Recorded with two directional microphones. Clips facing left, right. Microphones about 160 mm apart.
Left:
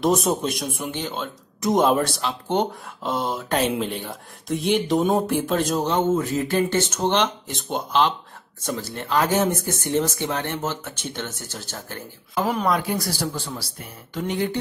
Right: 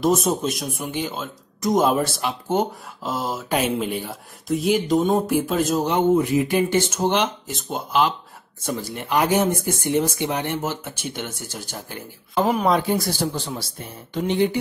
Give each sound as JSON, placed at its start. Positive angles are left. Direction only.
{"t": 0.0, "sound": "speech", "side_deg": 0}
{"t": 5.9, "sound": "speech", "side_deg": -15}
{"t": 12.6, "sound": "speech", "side_deg": -25}